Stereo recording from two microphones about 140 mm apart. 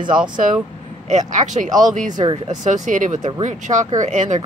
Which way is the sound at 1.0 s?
60° right (ahead or behind).